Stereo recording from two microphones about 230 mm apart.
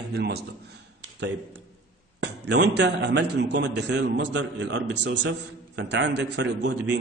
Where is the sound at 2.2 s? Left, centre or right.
Right.